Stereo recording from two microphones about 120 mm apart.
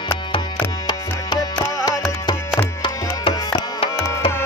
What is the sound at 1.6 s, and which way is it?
Music, 30° left (ahead or behind).